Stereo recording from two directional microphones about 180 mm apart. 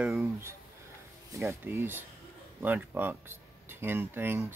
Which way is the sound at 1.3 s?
15° right (ahead or behind).